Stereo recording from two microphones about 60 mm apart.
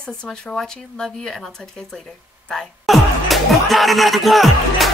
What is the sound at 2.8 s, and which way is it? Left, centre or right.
Speech, centre.